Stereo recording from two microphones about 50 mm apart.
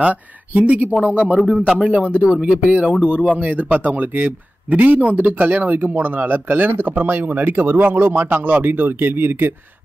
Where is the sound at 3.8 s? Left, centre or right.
Right.